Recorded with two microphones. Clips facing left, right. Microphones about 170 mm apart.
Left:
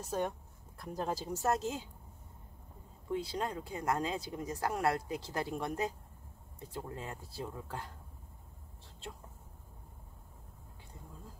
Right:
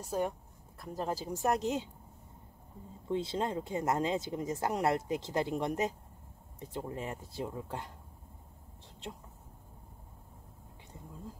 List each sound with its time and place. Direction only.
0.1 s speech: 5° right (ahead or behind)
3.1 s speech: 25° right (ahead or behind)